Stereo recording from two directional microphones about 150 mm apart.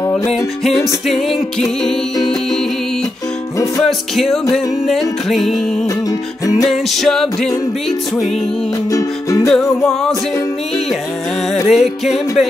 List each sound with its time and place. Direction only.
0.7 s music: centre (ahead or behind)
3.8 s music: centre (ahead or behind)
6.9 s music: centre (ahead or behind)
8.9 s music: 20° left (ahead or behind)
9.5 s music: centre (ahead or behind)
11.7 s music: centre (ahead or behind)